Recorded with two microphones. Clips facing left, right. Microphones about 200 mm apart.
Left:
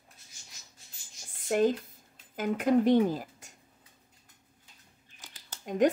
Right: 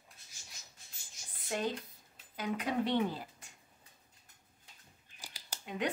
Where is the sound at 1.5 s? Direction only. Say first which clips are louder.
Left 10 dB; 50° left (ahead or behind).